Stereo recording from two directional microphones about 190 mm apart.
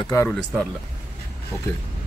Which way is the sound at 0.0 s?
15° left (ahead or behind).